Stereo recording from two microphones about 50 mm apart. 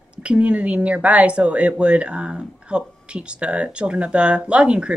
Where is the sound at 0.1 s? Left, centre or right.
Right.